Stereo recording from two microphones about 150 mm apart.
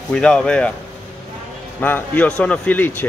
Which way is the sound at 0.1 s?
5° left (ahead or behind).